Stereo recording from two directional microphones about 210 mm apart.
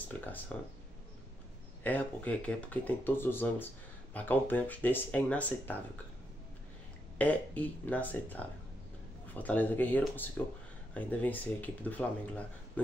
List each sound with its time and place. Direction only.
0.1 s speech: 10° left (ahead or behind)
1.8 s speech: 5° left (ahead or behind)
7.2 s speech: 5° left (ahead or behind)